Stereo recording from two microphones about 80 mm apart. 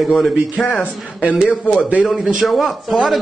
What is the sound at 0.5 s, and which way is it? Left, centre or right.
Speech, centre.